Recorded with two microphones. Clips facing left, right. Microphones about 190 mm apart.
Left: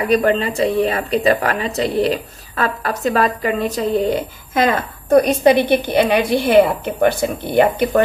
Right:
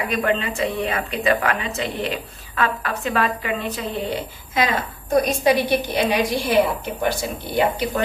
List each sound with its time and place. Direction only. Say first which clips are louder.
0.0 s a woman's voice: left 7 dB; 35° left (ahead or behind); by 8.0 s 55° left (ahead or behind)